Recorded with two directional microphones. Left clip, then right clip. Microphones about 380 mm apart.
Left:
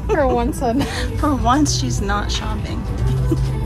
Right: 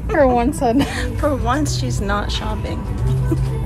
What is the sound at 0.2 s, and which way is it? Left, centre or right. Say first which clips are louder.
Speech: right 6 dB; centre.